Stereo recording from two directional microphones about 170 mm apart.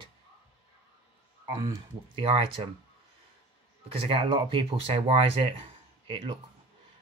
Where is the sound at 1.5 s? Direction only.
25° right (ahead or behind).